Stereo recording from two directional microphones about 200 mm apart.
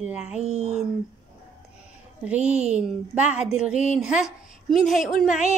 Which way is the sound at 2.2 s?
5° right (ahead or behind).